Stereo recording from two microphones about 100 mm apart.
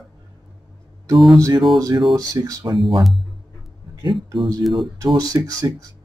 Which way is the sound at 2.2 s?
35° right (ahead or behind).